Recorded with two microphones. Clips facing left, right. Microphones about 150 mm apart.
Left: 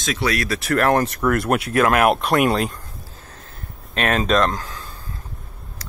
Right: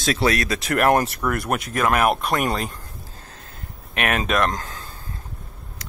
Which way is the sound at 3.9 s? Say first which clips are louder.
Left 2 dB; 15° right (ahead or behind).